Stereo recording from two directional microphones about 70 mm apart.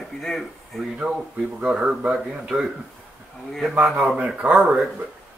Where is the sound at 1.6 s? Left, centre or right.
Centre.